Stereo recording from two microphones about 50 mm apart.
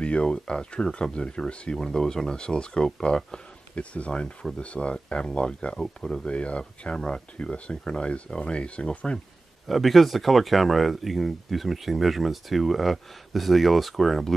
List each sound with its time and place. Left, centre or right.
0.0 s speech: left
9.7 s speech: centre